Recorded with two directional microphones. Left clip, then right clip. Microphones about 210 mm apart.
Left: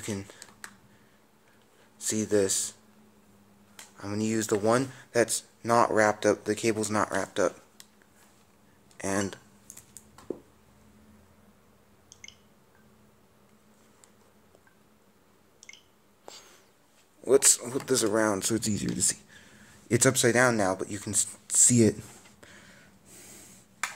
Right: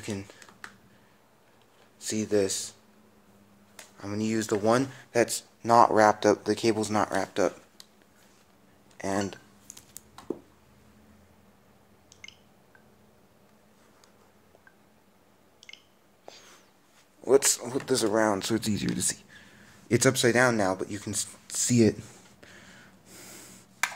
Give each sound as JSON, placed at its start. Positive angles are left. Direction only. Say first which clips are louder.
{"t": 0.0, "sound": "computer keyboard", "louder": "even", "side_deg": 5}
{"t": 2.0, "sound": "speech", "louder": "even", "side_deg": 10}
{"t": 4.0, "sound": "speech", "louder": "even", "side_deg": 5}
{"t": 8.9, "sound": "speech", "louder": "even", "side_deg": 10}
{"t": 16.3, "sound": "a sound", "louder": "left 1 dB", "side_deg": 10}
{"t": 17.2, "sound": "speech", "louder": "even", "side_deg": 0}
{"t": 23.0, "sound": "a sound", "louder": "right 3 dB", "side_deg": -25}